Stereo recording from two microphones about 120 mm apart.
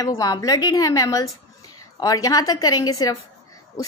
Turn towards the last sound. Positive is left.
turn(degrees=30)  # may be behind; listen again after turning